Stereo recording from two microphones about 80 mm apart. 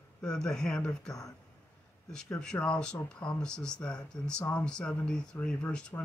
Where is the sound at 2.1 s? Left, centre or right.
Centre.